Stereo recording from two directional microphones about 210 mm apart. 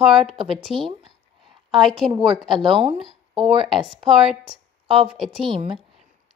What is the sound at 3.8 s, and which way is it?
Speech, 25° right (ahead or behind).